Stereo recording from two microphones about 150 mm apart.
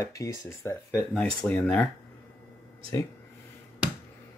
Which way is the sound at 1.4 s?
10° left (ahead or behind).